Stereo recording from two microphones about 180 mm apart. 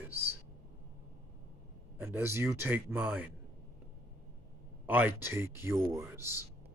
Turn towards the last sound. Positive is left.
turn(degrees=-15)  # may be behind; listen again after turning